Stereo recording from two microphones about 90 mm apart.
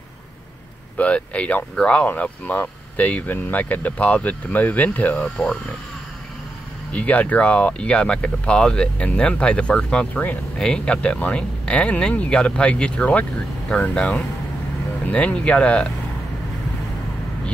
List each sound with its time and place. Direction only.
0.9 s speech: 15° left (ahead or behind)
6.9 s speech: 15° left (ahead or behind)